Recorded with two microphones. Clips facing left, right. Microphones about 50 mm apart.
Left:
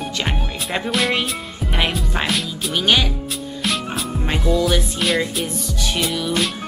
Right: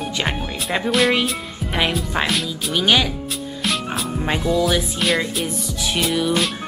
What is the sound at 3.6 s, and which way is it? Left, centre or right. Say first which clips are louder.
Music: even; centre.